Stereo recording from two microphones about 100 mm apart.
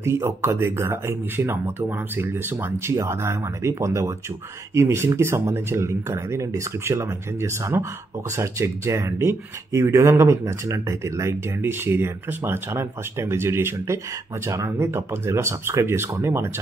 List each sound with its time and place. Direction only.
0.0 s speech: 30° right (ahead or behind)